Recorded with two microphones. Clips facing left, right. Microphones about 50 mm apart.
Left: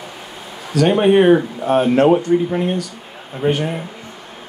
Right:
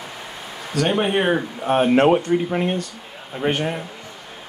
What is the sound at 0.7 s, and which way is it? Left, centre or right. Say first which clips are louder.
Speech: left 7 dB; centre.